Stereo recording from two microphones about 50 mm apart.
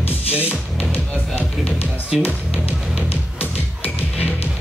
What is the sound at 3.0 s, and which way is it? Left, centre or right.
Music, left.